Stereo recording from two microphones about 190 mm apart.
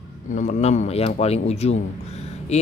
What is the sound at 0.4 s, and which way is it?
Speech, 40° left (ahead or behind).